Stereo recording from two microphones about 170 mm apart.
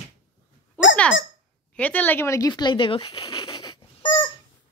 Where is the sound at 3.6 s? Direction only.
25° left (ahead or behind).